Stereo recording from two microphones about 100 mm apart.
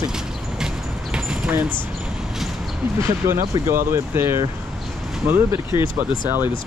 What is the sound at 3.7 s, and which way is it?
Speech, 25° right (ahead or behind).